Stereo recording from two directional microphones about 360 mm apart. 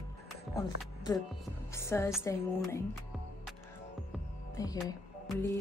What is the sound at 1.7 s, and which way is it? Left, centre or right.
Speech, centre.